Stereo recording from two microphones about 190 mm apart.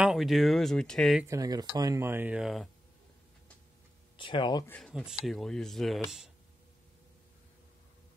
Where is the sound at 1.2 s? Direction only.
20° right (ahead or behind); by 2.6 s 5° right (ahead or behind).